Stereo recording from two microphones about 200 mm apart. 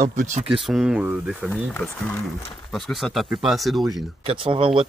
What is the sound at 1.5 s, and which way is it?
Speech, 10° left (ahead or behind).